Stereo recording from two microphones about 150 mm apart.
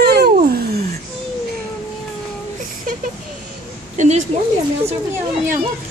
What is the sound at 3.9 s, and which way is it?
Speech, 55° right (ahead or behind).